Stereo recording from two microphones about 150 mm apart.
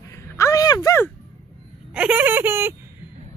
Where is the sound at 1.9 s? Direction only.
10° right (ahead or behind).